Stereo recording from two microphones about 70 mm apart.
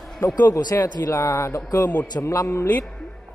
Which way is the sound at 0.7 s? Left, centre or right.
Left.